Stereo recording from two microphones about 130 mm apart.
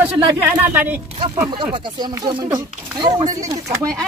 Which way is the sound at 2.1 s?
20° right (ahead or behind).